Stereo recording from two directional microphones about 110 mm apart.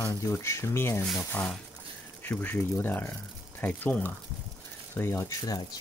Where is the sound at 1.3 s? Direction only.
10° left (ahead or behind).